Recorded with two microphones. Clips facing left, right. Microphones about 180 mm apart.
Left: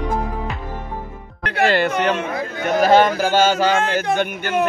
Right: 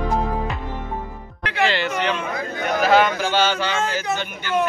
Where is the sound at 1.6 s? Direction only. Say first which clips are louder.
Left 4 dB; 55° left (ahead or behind).